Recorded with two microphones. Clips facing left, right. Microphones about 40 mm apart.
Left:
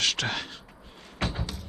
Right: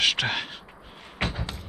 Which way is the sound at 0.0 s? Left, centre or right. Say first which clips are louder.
Right 4 dB; centre.